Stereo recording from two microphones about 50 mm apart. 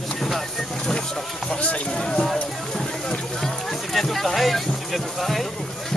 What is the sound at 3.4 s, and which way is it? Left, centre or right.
Music, centre.